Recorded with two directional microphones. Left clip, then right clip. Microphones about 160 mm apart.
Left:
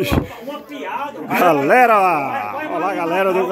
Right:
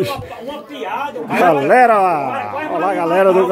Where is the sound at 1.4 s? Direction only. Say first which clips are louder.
Right 2 dB; 5° left (ahead or behind).